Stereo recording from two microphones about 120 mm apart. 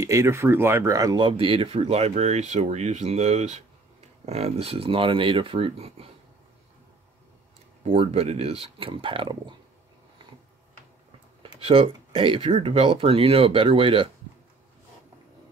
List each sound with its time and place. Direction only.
0.0 s speech: 25° right (ahead or behind)
1.3 s speech: 50° right (ahead or behind)
1.8 s speech: 60° right (ahead or behind)
7.8 s speech: 60° right (ahead or behind); by 9.6 s 40° right (ahead or behind)
11.6 s speech: 50° right (ahead or behind)
12.4 s speech: 60° right (ahead or behind)